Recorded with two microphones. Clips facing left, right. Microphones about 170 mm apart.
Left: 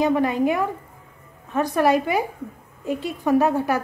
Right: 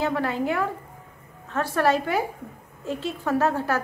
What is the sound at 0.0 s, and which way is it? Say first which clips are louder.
A woman's voice: left 6 dB; 15° left (ahead or behind).